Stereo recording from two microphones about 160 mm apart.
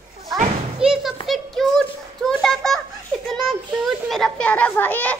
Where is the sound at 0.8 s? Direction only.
5° right (ahead or behind).